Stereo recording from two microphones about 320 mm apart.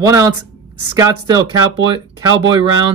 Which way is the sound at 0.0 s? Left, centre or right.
Centre.